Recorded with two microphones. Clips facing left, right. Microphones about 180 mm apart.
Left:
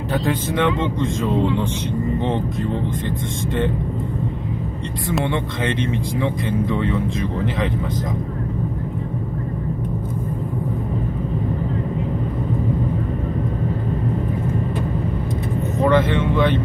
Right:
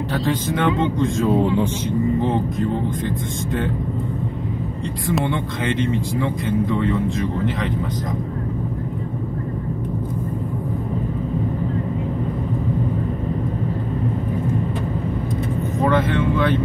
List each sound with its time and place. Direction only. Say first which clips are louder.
0.1 s speech: left 2 dB; centre (ahead or behind)
2.1 s speech: right 2 dB; centre (ahead or behind)
5.0 s speech: even; centre (ahead or behind)
15.8 s speech: left 2 dB; centre (ahead or behind)